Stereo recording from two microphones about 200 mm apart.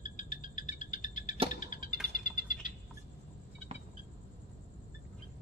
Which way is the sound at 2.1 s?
40° left (ahead or behind).